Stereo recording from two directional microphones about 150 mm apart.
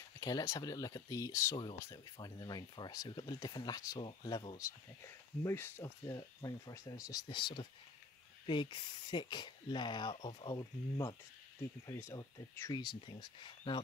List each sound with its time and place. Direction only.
0.2 s speech: 25° left (ahead or behind)
4.6 s speech: 20° left (ahead or behind)